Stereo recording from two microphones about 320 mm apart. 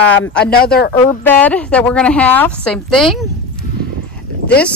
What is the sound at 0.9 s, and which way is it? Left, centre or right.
A woman's voice, centre.